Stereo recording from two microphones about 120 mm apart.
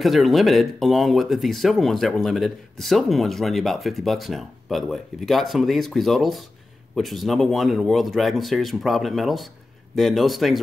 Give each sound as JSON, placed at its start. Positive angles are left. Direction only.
{"t": 0.0, "sound": "speech", "side_deg": 0}